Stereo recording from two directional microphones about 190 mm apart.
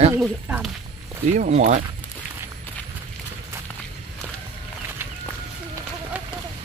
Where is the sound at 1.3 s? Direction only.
40° right (ahead or behind).